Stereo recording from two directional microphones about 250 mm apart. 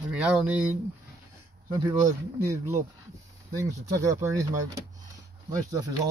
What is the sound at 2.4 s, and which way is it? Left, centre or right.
Speech, centre.